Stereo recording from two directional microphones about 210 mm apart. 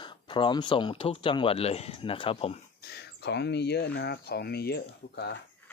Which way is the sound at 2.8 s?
50° left (ahead or behind).